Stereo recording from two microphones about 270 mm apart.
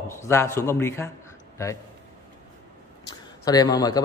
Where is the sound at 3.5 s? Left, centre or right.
Centre.